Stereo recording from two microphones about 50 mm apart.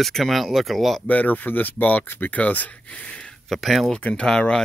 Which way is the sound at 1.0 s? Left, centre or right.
Left.